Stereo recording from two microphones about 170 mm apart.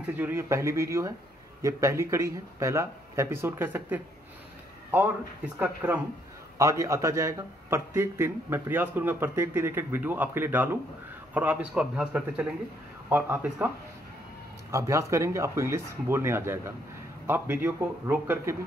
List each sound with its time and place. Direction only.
0.0 s speech: 10° right (ahead or behind)
14.7 s speech: 15° right (ahead or behind)